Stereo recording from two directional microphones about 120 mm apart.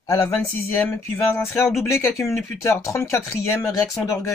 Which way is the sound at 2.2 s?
25° left (ahead or behind).